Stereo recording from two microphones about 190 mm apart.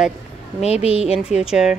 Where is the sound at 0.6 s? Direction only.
35° left (ahead or behind).